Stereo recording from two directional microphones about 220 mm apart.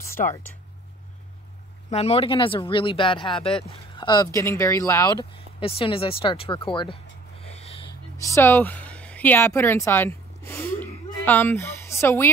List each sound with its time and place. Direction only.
1.9 s speech: 30° left (ahead or behind)
8.2 s speech: 15° left (ahead or behind)
10.8 s a sound: 10° left (ahead or behind)